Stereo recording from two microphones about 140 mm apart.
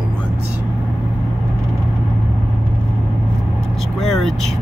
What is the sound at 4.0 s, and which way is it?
Speech, centre (ahead or behind).